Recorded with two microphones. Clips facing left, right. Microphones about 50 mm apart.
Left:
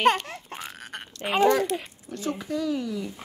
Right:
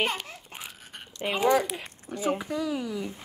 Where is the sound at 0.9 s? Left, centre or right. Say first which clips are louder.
Left 3 dB; left.